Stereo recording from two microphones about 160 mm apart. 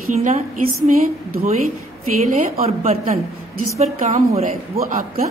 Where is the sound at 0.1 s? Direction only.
50° right (ahead or behind).